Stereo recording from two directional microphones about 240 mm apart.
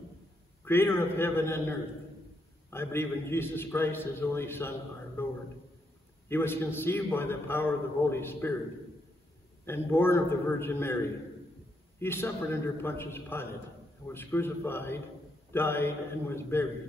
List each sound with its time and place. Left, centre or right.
0.7 s a man's voice: centre
9.7 s a man's voice: centre
12.0 s a man's voice: centre